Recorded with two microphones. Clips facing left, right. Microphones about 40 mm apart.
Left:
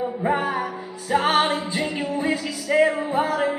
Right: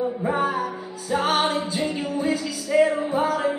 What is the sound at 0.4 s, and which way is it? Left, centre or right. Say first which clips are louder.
Music: right 1 dB; left.